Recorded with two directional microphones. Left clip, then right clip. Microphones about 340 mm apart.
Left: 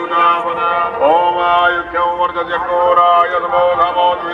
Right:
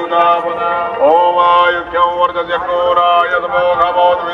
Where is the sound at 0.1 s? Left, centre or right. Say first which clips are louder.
Right 1 dB; right.